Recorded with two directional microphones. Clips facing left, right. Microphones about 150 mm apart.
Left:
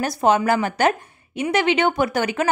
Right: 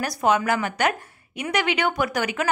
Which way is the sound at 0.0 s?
25° left (ahead or behind).